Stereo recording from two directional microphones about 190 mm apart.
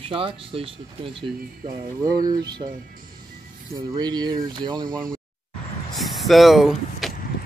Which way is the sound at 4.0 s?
20° right (ahead or behind).